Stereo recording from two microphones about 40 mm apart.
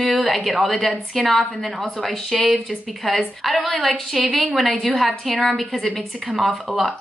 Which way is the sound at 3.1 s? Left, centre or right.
Centre.